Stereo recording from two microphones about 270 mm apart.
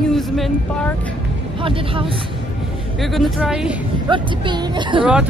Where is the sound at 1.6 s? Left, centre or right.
Centre.